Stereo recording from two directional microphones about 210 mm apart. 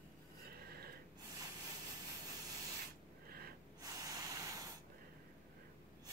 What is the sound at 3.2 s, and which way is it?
Snort, 45° right (ahead or behind).